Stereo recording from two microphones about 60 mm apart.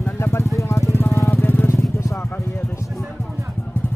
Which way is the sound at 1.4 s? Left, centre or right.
Left.